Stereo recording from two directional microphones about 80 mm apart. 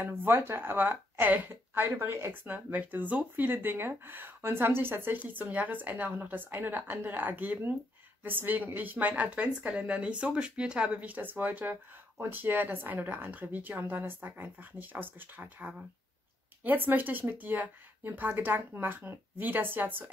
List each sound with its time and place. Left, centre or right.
0.0 s speech: right